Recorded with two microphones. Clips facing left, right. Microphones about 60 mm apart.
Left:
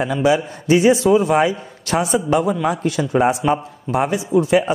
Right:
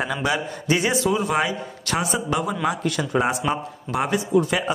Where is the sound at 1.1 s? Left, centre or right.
Left.